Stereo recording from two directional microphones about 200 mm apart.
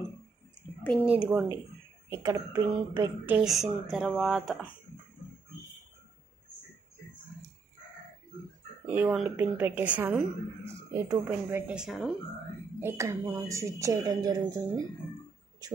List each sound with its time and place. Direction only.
0.8 s a woman's voice: 5° right (ahead or behind)
8.8 s a woman's voice: 10° right (ahead or behind)
12.8 s a woman's voice: 15° right (ahead or behind)